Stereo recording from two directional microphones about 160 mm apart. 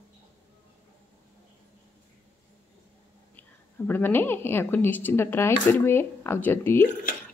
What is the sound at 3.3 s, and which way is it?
Speech, 10° left (ahead or behind).